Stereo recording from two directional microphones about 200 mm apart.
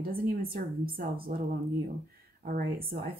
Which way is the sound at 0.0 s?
45° right (ahead or behind).